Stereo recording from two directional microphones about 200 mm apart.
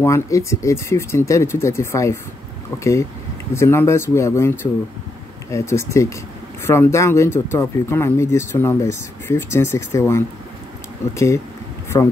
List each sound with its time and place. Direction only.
0.0 s speech: 15° left (ahead or behind)